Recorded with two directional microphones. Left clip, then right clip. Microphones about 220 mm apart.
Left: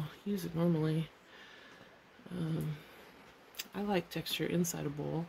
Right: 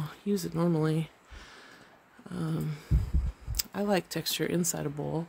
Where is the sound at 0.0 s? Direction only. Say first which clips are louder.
Right 8 dB; 45° right (ahead or behind).